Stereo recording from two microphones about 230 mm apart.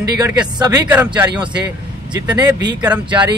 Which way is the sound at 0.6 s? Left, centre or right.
Centre.